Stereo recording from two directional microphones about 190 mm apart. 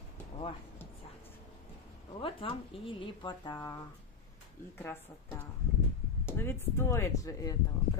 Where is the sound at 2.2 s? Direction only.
25° left (ahead or behind).